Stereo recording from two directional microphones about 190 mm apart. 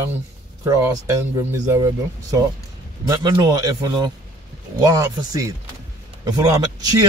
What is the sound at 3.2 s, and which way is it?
Speech, 20° right (ahead or behind).